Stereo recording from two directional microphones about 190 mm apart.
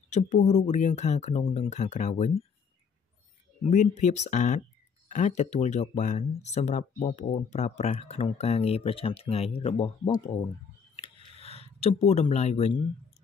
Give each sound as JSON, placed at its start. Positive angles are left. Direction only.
{"t": 0.1, "sound": "speech", "side_deg": 40}
{"t": 3.6, "sound": "speech", "side_deg": 40}
{"t": 11.0, "sound": "a sound", "side_deg": 30}